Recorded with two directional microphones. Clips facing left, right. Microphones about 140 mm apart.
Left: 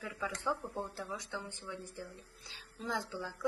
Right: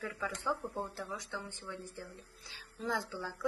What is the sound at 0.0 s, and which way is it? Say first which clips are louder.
Speech: even; 15° left (ahead or behind).